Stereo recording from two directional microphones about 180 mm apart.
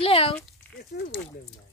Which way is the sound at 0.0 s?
30° left (ahead or behind).